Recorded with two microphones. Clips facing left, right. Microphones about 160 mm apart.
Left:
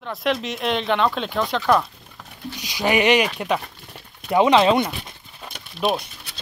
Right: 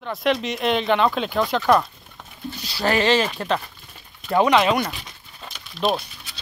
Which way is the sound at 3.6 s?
70° left (ahead or behind).